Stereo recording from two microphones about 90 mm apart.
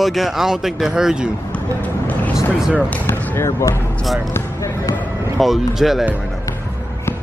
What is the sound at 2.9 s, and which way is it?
Basketball bounce, 25° left (ahead or behind).